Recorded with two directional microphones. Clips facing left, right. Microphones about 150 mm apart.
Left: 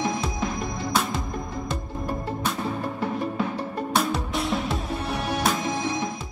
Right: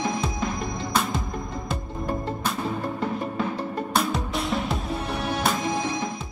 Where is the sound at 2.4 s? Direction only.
Centre (ahead or behind).